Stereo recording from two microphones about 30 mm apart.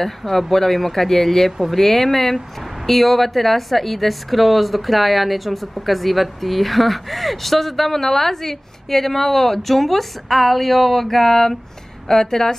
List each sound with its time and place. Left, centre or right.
0.0 s a woman's voice: centre